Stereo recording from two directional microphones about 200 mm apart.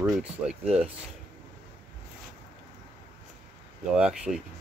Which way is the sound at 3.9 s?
5° right (ahead or behind).